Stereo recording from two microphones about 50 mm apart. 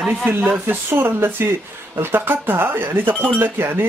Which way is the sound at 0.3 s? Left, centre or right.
Right.